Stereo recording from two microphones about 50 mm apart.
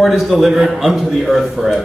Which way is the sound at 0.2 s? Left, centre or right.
Centre.